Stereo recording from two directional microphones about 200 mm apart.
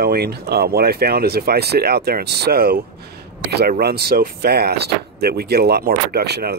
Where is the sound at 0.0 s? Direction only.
50° right (ahead or behind).